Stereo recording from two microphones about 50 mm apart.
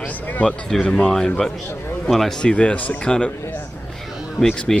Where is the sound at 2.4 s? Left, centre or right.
Left.